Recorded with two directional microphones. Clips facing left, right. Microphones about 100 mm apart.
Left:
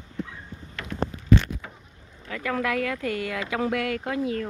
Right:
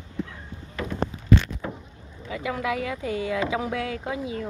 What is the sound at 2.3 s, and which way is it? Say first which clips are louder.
Speech: left 1 dB; 15° right (ahead or behind).